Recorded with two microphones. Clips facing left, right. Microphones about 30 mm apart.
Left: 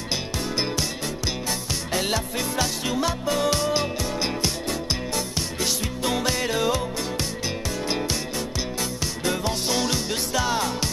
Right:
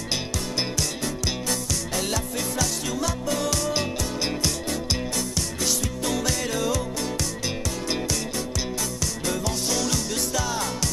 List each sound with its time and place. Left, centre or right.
0.7 s music: left
9.0 s music: left